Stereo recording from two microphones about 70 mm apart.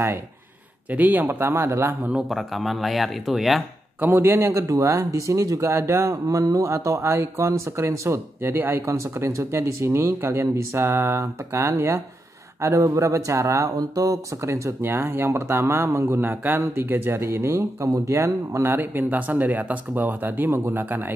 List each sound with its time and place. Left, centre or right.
0.8 s speech: right
2.2 s speech: centre
4.0 s speech: right
8.8 s speech: right
13.7 s speech: right